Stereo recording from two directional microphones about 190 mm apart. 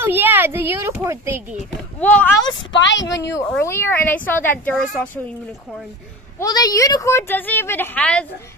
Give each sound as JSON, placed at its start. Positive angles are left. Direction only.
{"t": 0.0, "sound": "a child's voice", "side_deg": -10}
{"t": 2.0, "sound": "a woman's voice", "side_deg": 10}
{"t": 2.7, "sound": "speech", "side_deg": 70}
{"t": 3.1, "sound": "a woman's voice", "side_deg": 15}
{"t": 6.4, "sound": "a woman's voice", "side_deg": 20}